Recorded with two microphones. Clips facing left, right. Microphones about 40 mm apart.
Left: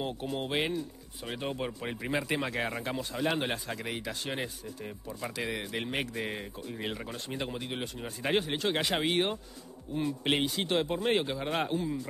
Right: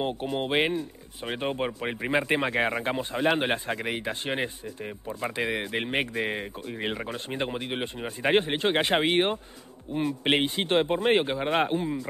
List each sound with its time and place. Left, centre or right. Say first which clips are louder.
0.0 s speech: right 5 dB; right